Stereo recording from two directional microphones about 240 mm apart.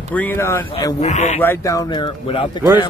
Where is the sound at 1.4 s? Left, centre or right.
Centre.